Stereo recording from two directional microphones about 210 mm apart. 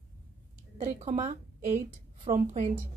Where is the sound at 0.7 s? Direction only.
35° right (ahead or behind).